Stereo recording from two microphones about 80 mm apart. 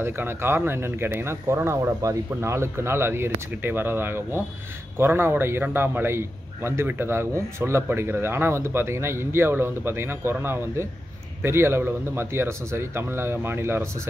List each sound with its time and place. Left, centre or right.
0.0 s a man's voice: right